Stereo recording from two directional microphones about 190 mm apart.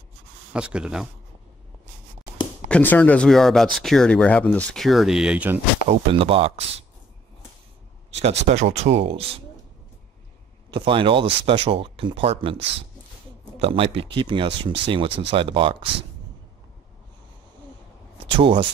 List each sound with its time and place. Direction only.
0.5 s speech: 5° right (ahead or behind)
2.7 s speech: 5° left (ahead or behind)
5.9 s speech: 30° right (ahead or behind)
8.1 s speech: 35° right (ahead or behind)
10.7 s speech: 25° right (ahead or behind)
18.2 s speech: 30° right (ahead or behind)